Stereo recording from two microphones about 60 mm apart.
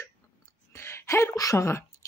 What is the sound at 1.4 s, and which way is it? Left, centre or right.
Speech, left.